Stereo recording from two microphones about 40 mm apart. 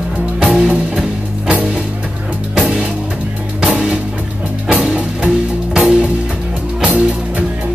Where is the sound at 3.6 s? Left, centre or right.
Right.